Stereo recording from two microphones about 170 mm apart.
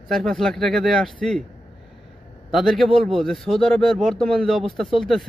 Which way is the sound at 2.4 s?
Centre (ahead or behind).